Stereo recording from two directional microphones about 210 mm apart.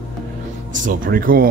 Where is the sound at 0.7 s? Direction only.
40° right (ahead or behind).